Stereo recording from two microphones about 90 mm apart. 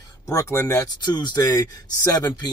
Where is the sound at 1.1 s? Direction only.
50° left (ahead or behind).